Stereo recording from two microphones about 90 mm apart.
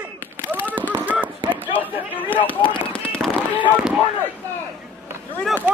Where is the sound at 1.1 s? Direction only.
20° right (ahead or behind).